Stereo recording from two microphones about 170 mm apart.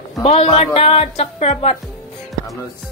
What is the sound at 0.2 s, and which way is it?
A woman's voice, 40° left (ahead or behind).